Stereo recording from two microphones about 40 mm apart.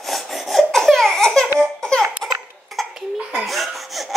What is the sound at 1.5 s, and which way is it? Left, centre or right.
Laughter, centre.